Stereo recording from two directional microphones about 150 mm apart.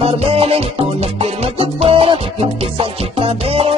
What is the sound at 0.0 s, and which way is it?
Music, 40° right (ahead or behind).